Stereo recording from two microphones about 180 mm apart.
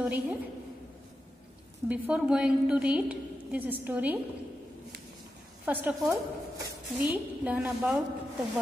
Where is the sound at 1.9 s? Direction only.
5° right (ahead or behind).